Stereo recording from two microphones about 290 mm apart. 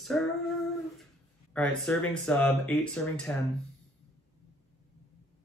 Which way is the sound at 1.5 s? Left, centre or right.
Centre.